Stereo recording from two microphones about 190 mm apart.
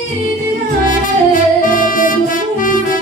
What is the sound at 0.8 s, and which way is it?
Music, 45° left (ahead or behind).